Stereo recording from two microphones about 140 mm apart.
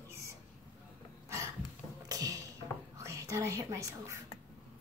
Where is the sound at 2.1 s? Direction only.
25° right (ahead or behind).